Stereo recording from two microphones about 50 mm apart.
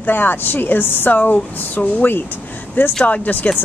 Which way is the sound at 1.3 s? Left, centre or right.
Left.